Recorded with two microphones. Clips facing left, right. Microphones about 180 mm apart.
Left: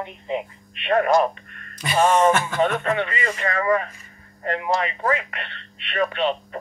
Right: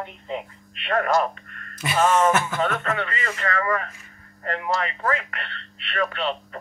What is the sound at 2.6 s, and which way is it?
Speech, 15° left (ahead or behind).